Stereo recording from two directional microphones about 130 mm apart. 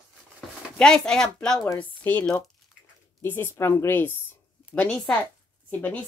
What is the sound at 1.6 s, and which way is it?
A woman's voice, 15° left (ahead or behind).